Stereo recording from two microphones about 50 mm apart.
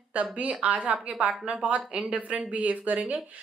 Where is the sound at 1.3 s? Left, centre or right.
Centre.